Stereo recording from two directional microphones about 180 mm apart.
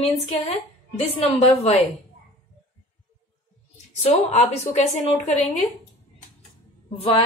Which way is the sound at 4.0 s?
40° left (ahead or behind).